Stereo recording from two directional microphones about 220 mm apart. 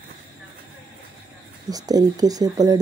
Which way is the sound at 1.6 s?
15° right (ahead or behind).